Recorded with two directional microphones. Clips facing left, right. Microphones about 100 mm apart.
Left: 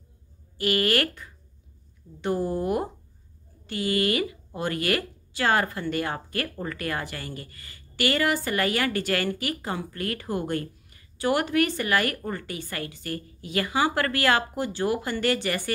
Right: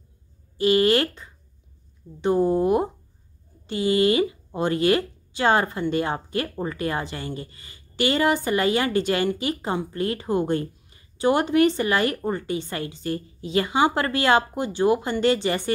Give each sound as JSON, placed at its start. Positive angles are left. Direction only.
{"t": 0.6, "sound": "speech", "side_deg": -20}